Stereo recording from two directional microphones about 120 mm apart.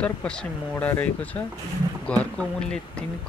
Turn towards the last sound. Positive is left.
turn(degrees=5)  # may be behind; listen again after turning